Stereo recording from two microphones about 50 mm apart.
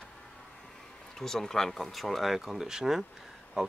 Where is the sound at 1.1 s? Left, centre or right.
Centre.